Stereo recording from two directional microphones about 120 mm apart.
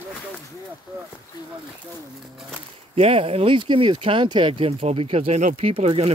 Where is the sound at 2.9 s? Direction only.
55° right (ahead or behind); by 5.6 s 75° right (ahead or behind).